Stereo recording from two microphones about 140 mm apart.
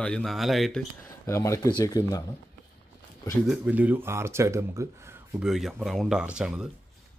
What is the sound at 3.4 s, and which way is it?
Speech, 5° right (ahead or behind).